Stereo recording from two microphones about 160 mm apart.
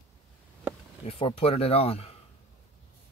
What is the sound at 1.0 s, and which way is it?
Speech, 40° left (ahead or behind).